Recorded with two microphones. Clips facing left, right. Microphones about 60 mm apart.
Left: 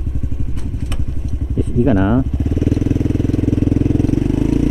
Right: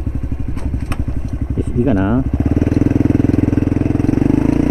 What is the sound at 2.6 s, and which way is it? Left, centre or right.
Vehicle, right.